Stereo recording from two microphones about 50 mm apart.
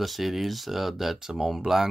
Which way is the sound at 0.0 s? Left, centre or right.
Centre.